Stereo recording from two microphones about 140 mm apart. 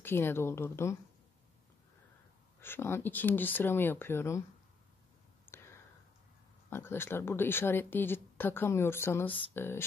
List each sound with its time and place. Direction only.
0.0 s speech: 15° left (ahead or behind)
2.6 s speech: 15° left (ahead or behind)
5.5 s whispering: 15° left (ahead or behind)
6.7 s speech: 15° left (ahead or behind)